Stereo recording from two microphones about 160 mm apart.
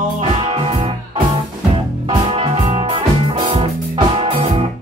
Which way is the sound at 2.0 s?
35° right (ahead or behind).